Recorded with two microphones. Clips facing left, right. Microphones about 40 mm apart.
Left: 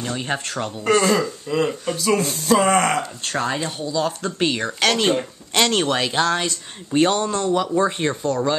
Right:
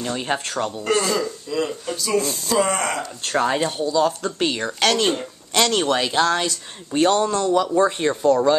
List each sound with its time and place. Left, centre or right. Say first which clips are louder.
0.0 s speech: right 1 dB; centre
1.1 s speech: left 3 dB; left
3.3 s speech: right 5 dB; centre
3.9 s speech: right 1 dB; centre
5.5 s speech: even; centre
5.9 s speech: right 1 dB; centre